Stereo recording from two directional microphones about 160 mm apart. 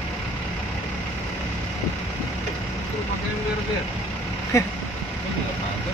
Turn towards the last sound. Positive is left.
turn(degrees=20)  # may be behind; listen again after turning